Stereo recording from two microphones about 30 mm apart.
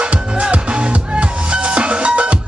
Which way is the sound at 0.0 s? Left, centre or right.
Right.